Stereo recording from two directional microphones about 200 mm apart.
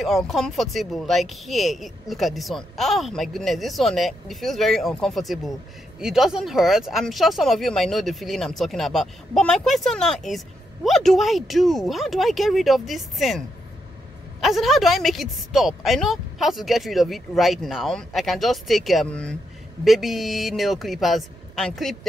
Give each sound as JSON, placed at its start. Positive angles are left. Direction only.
{"t": 0.0, "sound": "speech", "side_deg": 0}
{"t": 14.4, "sound": "speech", "side_deg": 0}